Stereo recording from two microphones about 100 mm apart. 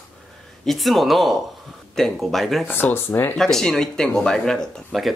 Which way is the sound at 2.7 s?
20° left (ahead or behind).